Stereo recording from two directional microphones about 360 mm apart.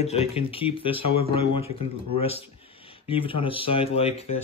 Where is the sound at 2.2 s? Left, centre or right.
Centre.